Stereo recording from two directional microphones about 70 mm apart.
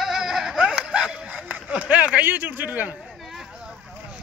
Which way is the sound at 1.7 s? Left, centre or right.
Right.